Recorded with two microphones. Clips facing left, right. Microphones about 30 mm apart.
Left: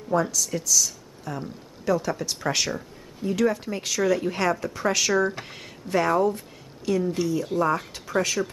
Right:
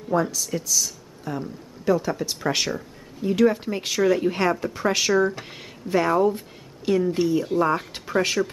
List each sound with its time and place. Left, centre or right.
0.1 s speech: centre
6.2 s speech: right